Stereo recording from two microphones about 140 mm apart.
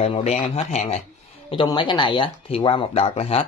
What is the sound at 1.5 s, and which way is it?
Speech, 35° left (ahead or behind).